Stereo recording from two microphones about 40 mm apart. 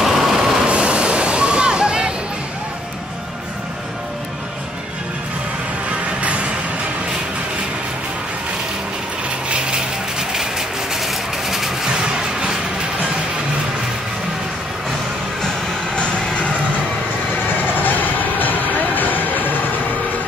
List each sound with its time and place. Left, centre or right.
0.0 s train: centre
0.7 s vehicle: right
11.0 s a sound: centre
11.9 s a sound: right
15.9 s music: left
17.5 s music: left